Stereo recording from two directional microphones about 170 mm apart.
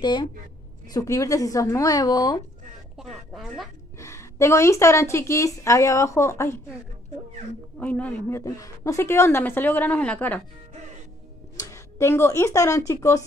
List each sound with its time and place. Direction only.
0.0 s speech: 25° left (ahead or behind)
3.0 s speech: centre (ahead or behind)
4.0 s a woman's voice: 15° left (ahead or behind)
7.7 s a woman's voice: 10° left (ahead or behind)
11.5 s speech: 20° left (ahead or behind)